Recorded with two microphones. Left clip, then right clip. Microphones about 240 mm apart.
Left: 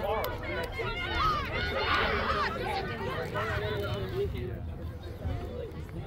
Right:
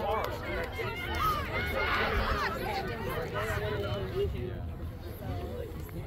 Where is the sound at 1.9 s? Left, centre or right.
Centre.